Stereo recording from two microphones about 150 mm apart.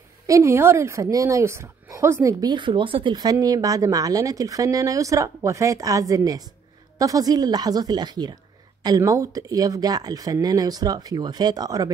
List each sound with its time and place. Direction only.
0.3 s a woman's voice: 15° right (ahead or behind)